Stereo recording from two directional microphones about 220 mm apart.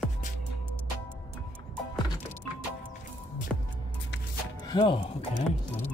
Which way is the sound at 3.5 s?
Centre (ahead or behind).